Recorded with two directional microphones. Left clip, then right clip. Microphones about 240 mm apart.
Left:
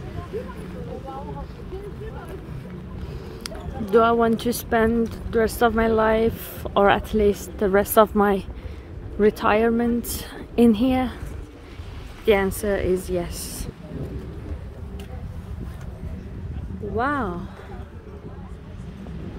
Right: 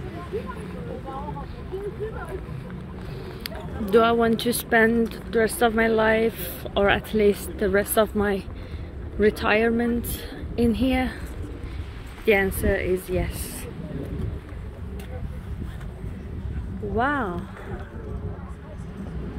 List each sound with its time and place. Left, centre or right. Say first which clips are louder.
3.4 s a woman's voice: even; centre
10.3 s a woman's voice: left 6 dB; left
12.3 s a woman's voice: left 1 dB; centre
16.9 s a woman's voice: even; centre